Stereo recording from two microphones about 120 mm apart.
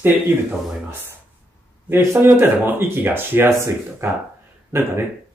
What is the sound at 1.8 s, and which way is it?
Speech, 20° right (ahead or behind).